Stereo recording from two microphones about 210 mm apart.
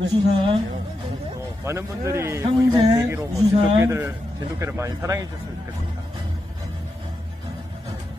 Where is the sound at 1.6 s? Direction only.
10° right (ahead or behind).